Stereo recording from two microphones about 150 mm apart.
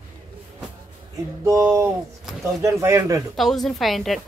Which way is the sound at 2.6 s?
20° right (ahead or behind).